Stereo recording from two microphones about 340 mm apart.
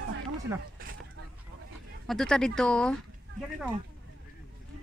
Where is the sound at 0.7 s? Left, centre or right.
Right.